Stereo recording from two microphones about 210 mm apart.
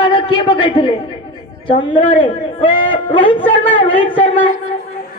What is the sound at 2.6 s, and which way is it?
Speech, 25° left (ahead or behind).